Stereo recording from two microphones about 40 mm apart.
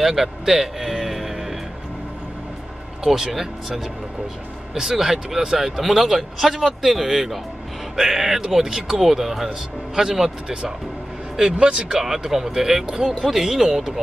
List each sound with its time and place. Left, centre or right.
0.0 s music: centre
3.0 s speech: centre
11.6 s speech: right
12.0 s speech: centre